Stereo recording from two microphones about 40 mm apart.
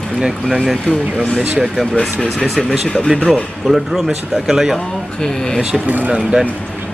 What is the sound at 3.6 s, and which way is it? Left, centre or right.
Speech, centre.